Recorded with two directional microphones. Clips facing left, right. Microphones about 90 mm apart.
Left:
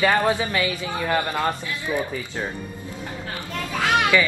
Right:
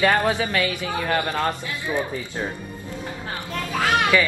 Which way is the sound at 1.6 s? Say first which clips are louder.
Even; 20° right (ahead or behind).